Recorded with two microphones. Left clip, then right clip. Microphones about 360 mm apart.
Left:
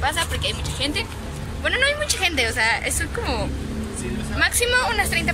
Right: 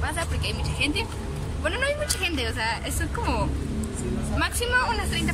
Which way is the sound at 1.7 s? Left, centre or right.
Centre.